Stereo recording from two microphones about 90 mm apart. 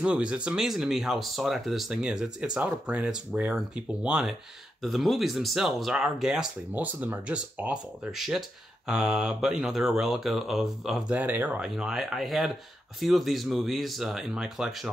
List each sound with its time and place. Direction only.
0.0 s speech: 10° right (ahead or behind)
6.7 s speech: 20° right (ahead or behind); by 11.1 s 5° right (ahead or behind)
11.1 s speech: 20° right (ahead or behind)
11.7 s speech: 5° right (ahead or behind)